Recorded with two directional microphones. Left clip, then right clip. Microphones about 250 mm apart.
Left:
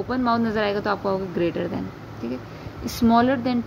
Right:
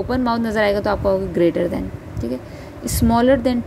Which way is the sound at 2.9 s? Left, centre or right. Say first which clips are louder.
Right 4 dB; centre.